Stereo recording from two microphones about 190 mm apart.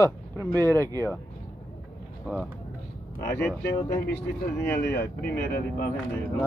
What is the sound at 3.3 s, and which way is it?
Speech, 10° left (ahead or behind).